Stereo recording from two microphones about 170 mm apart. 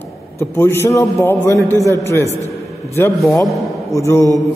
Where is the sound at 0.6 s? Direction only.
15° left (ahead or behind).